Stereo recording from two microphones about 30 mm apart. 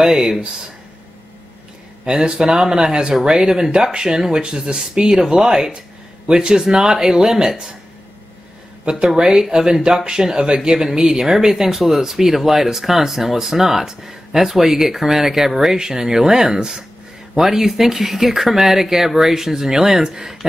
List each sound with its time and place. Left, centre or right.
2.0 s speech: right
8.8 s speech: right